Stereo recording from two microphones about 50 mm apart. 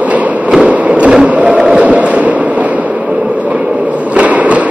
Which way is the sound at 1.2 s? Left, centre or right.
Right.